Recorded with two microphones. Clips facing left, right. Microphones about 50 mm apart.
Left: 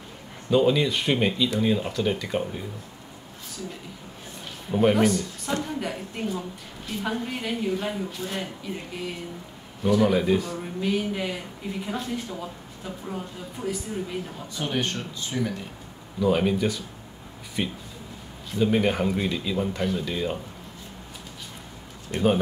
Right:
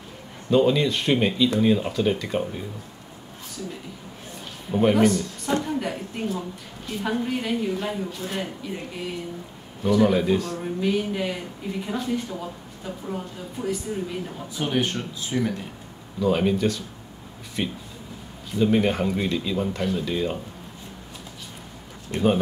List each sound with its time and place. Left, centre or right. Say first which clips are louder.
0.5 s speech: right 1 dB; centre
4.6 s speech: right 1 dB; centre
9.8 s speech: right 1 dB; centre
14.5 s speech: right 3 dB; centre